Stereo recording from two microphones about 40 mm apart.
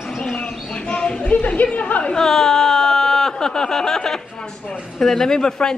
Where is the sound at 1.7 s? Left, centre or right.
Left.